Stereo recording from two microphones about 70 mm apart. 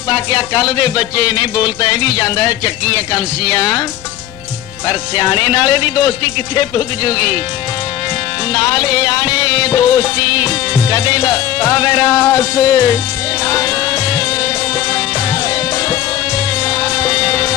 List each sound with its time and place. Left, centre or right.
0.1 s speech: left
4.8 s speech: left
8.5 s speech: left
10.7 s music: left
16.6 s music: left